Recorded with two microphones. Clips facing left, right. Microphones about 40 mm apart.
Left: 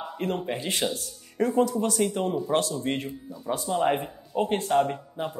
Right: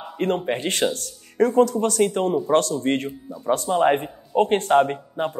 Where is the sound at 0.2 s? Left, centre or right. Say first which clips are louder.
Right 7 dB; right.